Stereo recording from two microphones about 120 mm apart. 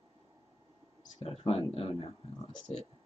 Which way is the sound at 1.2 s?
50° left (ahead or behind).